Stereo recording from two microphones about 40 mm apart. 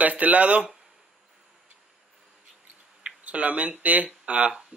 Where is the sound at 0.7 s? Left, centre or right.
Centre.